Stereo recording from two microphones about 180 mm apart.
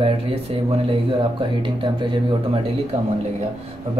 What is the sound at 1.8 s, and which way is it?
Speech, 30° right (ahead or behind).